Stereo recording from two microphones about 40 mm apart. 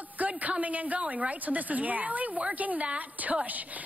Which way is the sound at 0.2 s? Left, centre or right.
Right.